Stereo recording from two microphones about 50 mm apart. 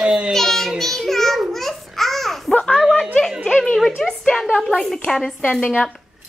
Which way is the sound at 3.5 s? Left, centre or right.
Centre.